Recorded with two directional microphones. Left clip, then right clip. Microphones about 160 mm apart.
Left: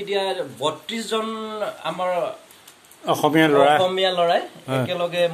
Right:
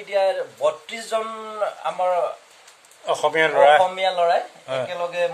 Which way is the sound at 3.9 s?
5° right (ahead or behind).